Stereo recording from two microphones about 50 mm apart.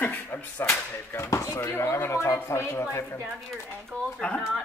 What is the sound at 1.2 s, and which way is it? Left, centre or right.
Speech, left.